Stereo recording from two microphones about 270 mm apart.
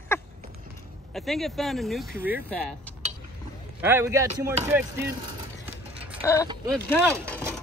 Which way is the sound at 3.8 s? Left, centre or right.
Centre.